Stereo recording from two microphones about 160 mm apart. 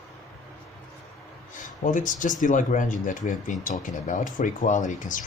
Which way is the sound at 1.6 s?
55° left (ahead or behind).